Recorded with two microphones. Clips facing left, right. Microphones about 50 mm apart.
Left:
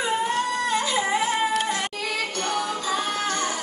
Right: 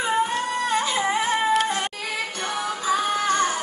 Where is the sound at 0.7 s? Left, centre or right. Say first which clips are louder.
Right 1 dB; right.